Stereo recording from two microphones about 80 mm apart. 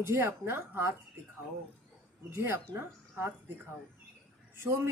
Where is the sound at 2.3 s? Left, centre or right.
Right.